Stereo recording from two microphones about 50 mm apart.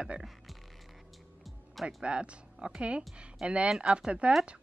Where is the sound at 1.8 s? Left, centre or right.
Right.